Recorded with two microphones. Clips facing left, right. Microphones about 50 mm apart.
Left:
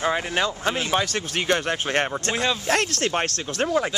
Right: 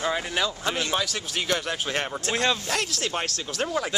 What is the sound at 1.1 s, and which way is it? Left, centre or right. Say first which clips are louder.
Speech: left 4 dB; left.